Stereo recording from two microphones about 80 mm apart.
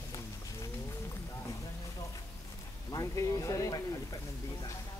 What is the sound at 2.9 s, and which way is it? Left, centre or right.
Speech, left.